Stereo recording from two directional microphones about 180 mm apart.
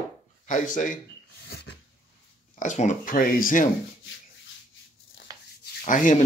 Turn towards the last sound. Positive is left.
turn(degrees=45)  # may be behind; listen again after turning